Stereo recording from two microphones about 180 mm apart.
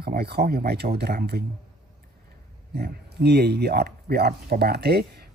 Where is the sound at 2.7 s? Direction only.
65° right (ahead or behind).